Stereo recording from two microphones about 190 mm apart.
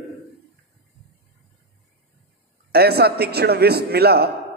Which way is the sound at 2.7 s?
55° right (ahead or behind).